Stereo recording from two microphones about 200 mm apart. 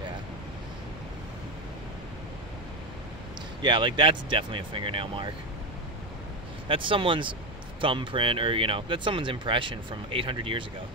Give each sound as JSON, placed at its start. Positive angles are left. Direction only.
{"t": 3.6, "sound": "speech", "side_deg": -25}
{"t": 6.7, "sound": "speech", "side_deg": -25}